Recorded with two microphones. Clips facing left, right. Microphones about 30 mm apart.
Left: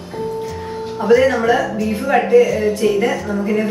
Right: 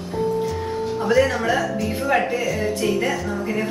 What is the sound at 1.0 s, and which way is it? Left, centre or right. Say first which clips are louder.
Speech: left 6 dB; centre.